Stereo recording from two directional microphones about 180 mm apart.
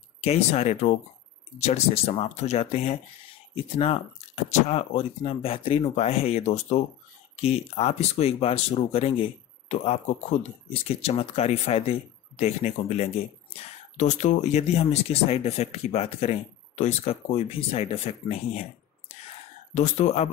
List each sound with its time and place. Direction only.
0.2 s speech: 35° left (ahead or behind)
19.7 s speech: 40° left (ahead or behind)